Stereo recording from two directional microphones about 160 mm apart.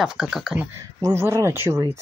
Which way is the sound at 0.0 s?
Centre (ahead or behind).